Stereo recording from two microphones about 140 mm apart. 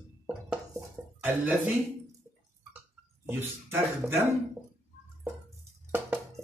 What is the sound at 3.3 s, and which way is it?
Speech, 15° right (ahead or behind).